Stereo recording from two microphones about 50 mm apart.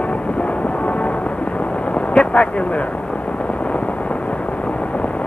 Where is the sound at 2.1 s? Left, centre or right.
Left.